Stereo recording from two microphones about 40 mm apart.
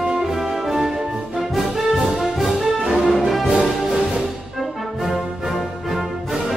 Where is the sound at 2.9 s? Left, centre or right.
Centre.